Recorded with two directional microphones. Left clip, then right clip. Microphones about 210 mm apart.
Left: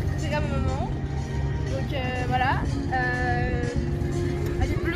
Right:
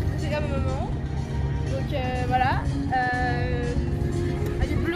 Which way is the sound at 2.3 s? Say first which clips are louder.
Right 1 dB; 45° right (ahead or behind).